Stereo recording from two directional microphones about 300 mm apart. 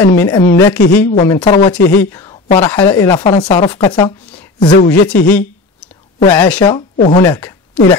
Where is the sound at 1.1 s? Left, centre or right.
Centre.